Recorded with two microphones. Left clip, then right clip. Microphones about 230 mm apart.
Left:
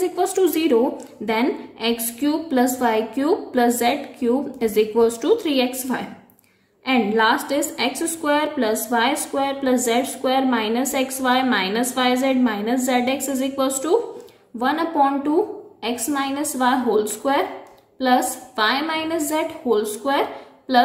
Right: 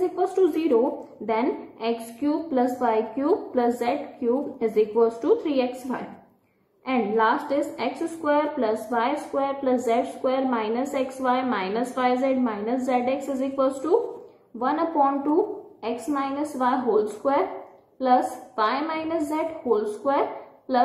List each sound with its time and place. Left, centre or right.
0.0 s a woman's voice: left